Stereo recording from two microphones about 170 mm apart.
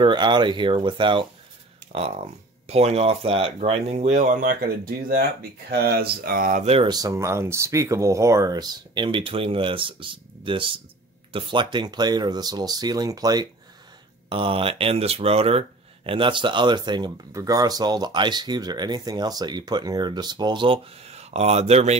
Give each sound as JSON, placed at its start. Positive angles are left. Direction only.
{"t": 0.0, "sound": "speech", "side_deg": -25}
{"t": 6.9, "sound": "speech", "side_deg": -20}